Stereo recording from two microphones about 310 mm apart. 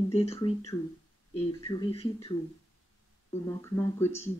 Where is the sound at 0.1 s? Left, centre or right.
Centre.